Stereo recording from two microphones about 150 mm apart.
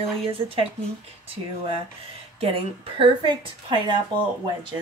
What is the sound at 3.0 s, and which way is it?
Speech, 35° right (ahead or behind).